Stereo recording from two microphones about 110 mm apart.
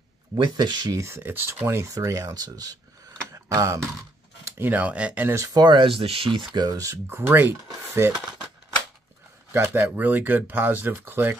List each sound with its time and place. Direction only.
0.4 s speech: 40° right (ahead or behind)
1.0 s speech: 20° right (ahead or behind)
4.5 s speech: 20° right (ahead or behind)
5.3 s speech: 30° right (ahead or behind)
5.9 s speech: 60° right (ahead or behind)
6.5 s speech: 35° right (ahead or behind)
7.1 s speech: 20° right (ahead or behind)
9.5 s speech: 20° right (ahead or behind)